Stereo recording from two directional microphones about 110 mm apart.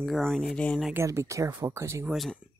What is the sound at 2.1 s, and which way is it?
Speech, centre (ahead or behind).